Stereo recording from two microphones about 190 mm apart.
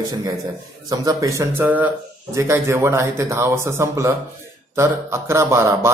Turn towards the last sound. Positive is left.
turn(degrees=-15)  # may be behind; listen again after turning